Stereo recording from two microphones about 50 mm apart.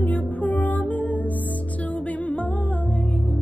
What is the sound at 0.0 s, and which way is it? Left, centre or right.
Music, left.